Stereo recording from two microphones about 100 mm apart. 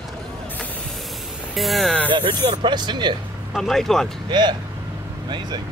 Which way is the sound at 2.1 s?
55° right (ahead or behind).